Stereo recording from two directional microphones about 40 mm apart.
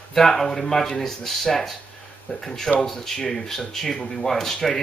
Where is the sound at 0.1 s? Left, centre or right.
Centre.